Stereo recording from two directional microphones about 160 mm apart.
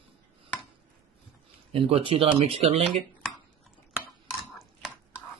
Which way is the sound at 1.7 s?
35° right (ahead or behind).